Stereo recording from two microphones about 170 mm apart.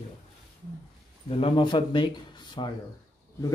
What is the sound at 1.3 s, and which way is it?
A man's voice, 30° left (ahead or behind).